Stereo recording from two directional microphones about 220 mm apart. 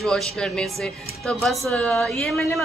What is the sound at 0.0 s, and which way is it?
A woman's voice, centre (ahead or behind).